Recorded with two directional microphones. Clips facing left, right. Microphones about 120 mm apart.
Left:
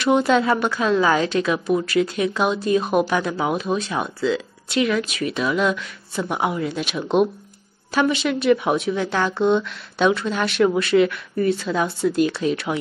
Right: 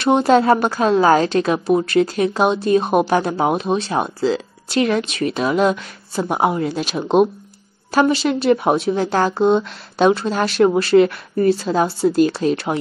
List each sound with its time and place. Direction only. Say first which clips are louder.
0.0 s a woman's voice: right 4 dB; 35° right (ahead or behind)